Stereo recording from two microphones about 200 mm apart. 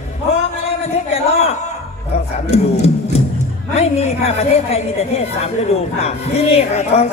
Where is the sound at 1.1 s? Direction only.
35° left (ahead or behind).